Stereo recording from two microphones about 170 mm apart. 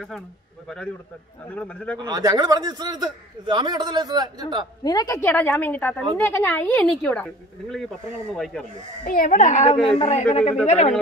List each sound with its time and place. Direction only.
1.5 s a woman's voice: 10° left (ahead or behind)
2.0 s a man's voice: 25° right (ahead or behind)
4.8 s a woman's voice: 20° left (ahead or behind)
9.0 s a child's voice: 55° left (ahead or behind); by 11.0 s 40° left (ahead or behind)